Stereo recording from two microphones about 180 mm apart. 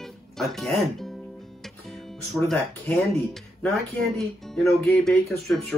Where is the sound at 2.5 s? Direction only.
5° left (ahead or behind).